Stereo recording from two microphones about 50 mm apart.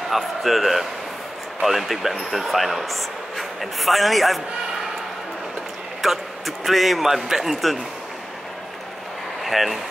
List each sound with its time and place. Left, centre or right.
0.1 s a man's voice: centre
6.0 s a man's voice: centre
9.4 s speech: centre